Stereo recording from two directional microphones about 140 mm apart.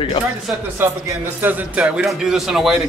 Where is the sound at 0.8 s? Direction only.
15° right (ahead or behind).